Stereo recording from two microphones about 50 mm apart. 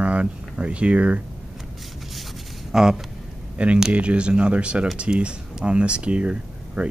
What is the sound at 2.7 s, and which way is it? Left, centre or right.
Speech, centre.